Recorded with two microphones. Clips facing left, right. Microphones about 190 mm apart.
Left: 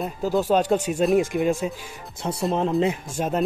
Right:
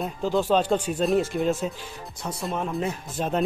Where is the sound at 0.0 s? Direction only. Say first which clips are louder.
Left 1 dB; 10° left (ahead or behind).